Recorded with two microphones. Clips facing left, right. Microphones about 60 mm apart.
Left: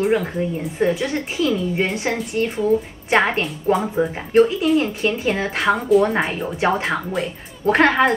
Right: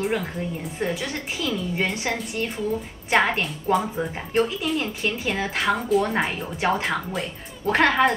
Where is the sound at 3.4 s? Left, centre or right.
Centre.